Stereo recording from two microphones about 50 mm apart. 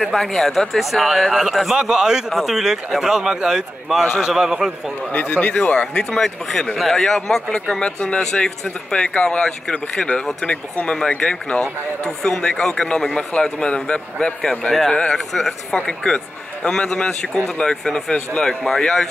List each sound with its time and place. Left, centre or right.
0.0 s a man's voice: centre
5.1 s speech: left
6.0 s a man's voice: centre